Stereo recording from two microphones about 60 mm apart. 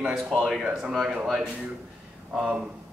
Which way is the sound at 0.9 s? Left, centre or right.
Centre.